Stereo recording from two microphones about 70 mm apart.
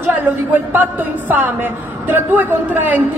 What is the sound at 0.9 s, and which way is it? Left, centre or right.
A woman's voice, right.